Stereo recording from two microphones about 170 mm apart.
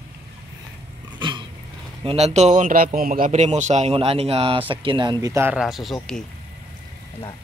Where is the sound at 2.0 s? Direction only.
40° right (ahead or behind); by 5.9 s centre (ahead or behind).